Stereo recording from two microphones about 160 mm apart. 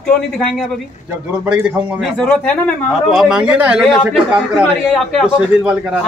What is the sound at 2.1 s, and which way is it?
A man's voice, 5° left (ahead or behind).